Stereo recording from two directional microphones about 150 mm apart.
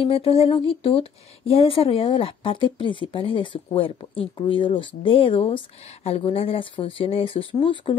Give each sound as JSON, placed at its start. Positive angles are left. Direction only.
{"t": 0.0, "sound": "speech", "side_deg": 40}